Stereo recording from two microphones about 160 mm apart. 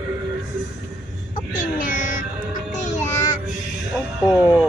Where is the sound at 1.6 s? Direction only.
55° left (ahead or behind).